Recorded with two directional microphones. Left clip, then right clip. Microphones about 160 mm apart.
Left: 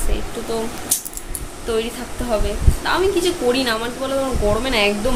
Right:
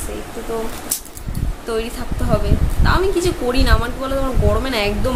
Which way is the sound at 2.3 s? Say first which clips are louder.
Right 1 dB; 10° right (ahead or behind).